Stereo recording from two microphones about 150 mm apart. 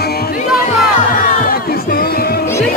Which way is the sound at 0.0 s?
90° left.